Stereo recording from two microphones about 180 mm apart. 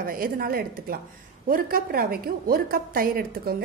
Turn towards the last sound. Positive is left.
turn(degrees=-55)  # may be behind; listen again after turning